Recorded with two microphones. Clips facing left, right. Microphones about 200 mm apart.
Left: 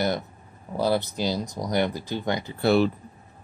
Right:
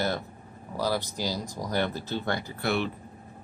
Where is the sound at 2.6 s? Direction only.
35° left (ahead or behind).